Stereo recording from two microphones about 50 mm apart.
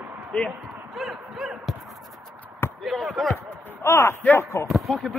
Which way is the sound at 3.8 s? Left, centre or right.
Left.